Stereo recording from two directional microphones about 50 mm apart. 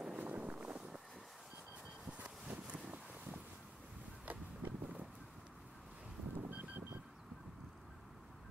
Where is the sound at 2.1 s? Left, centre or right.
Right.